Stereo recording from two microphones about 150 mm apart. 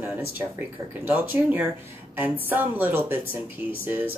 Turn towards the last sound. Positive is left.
turn(degrees=-15)  # may be behind; listen again after turning